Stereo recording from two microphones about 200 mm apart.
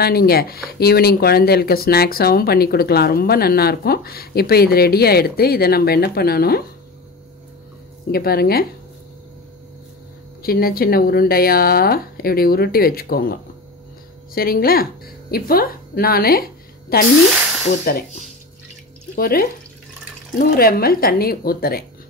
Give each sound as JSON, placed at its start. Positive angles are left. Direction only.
{"t": 0.0, "sound": "speech", "side_deg": 50}
{"t": 8.1, "sound": "speech", "side_deg": 50}
{"t": 10.4, "sound": "speech", "side_deg": 50}